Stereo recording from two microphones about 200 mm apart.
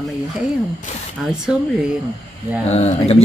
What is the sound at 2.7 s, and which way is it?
Speech, 30° left (ahead or behind).